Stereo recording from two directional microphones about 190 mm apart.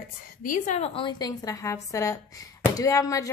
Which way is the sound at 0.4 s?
40° left (ahead or behind).